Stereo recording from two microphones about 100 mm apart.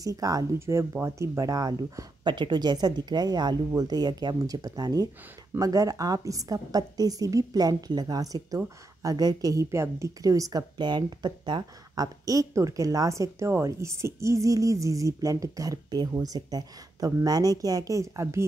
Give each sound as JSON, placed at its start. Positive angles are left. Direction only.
{"t": 0.0, "sound": "a woman's voice", "side_deg": -35}